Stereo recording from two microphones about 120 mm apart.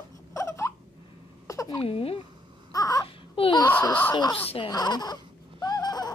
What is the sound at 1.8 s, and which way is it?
Speech, 55° left (ahead or behind).